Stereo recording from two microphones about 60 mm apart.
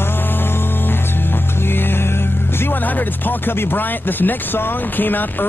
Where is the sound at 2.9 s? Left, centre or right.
Left.